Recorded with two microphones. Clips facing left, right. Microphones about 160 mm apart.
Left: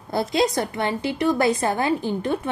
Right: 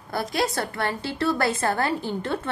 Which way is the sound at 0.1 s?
20° left (ahead or behind).